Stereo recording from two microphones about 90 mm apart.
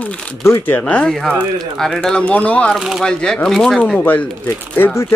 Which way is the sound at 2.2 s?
15° left (ahead or behind).